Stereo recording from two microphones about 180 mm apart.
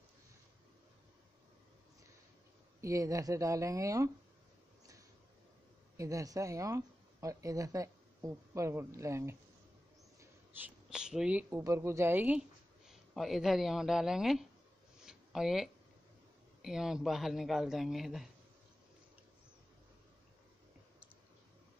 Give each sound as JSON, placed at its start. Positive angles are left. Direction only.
{"t": 2.8, "sound": "speech", "side_deg": -15}
{"t": 5.9, "sound": "speech", "side_deg": -20}
{"t": 15.0, "sound": "a sound", "side_deg": 0}
{"t": 16.6, "sound": "speech", "side_deg": -5}